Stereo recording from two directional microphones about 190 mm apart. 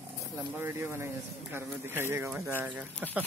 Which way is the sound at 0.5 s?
10° right (ahead or behind).